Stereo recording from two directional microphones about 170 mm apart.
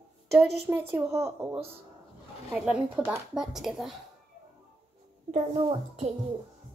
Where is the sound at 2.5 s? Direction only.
5° right (ahead or behind).